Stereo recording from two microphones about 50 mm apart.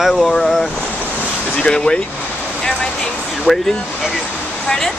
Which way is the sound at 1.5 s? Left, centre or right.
Centre.